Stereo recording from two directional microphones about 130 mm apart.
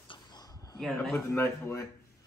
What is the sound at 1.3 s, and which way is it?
Speech, 15° left (ahead or behind).